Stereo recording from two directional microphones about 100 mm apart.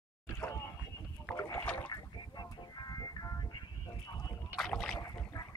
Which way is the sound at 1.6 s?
15° left (ahead or behind).